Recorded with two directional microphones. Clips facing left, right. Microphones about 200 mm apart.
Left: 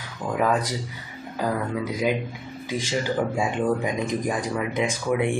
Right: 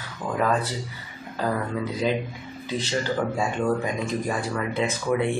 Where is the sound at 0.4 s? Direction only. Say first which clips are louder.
Left 1 dB; 10° left (ahead or behind).